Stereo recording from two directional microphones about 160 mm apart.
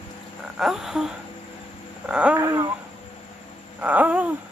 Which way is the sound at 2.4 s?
20° right (ahead or behind).